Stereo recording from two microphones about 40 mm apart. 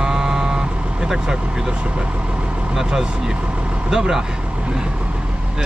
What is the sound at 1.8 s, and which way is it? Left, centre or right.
Speech, right.